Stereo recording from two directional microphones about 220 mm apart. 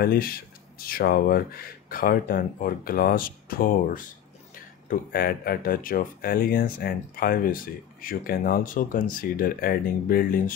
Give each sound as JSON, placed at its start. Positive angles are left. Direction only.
{"t": 0.0, "sound": "speech", "side_deg": 45}